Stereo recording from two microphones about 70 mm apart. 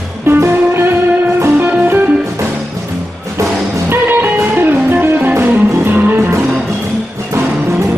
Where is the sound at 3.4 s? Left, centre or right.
Right.